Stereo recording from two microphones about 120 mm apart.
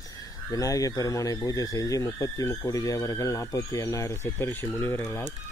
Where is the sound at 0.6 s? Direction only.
30° left (ahead or behind).